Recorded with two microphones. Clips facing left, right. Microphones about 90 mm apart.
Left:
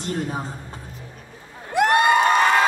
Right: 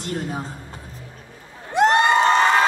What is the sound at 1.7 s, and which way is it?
Crowd, 25° right (ahead or behind).